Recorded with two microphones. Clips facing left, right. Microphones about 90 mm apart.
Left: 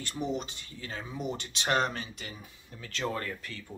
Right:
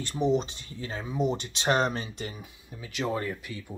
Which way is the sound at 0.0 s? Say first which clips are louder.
Right 7 dB; 20° right (ahead or behind).